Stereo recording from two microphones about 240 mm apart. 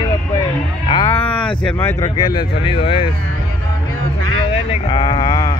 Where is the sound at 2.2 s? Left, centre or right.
Centre.